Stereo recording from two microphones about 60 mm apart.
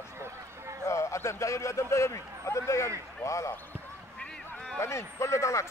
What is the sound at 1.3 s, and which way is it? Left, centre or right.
Speech, left.